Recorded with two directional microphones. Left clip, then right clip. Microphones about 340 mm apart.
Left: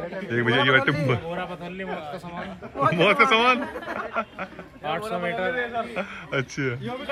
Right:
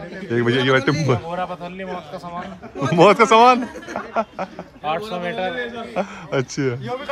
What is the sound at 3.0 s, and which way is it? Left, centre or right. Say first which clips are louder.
Speech: right 8 dB; centre.